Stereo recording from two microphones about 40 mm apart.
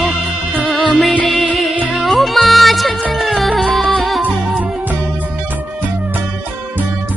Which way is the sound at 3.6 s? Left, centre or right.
Centre.